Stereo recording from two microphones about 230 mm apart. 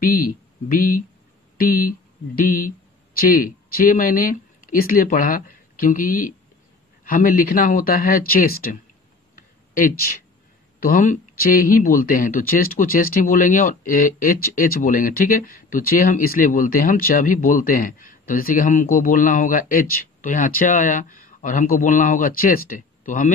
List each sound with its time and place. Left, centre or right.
0.0 s speech: left
9.3 s a sound: left
10.8 s speech: left